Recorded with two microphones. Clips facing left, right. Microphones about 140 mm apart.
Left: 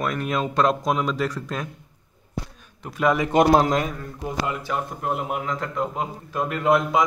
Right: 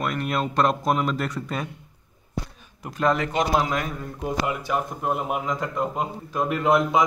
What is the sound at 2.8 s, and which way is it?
Speech, 5° left (ahead or behind).